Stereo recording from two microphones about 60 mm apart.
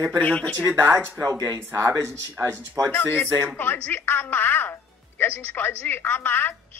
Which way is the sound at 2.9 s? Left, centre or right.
Left.